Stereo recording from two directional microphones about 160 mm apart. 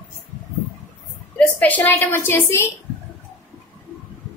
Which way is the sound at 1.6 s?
10° left (ahead or behind).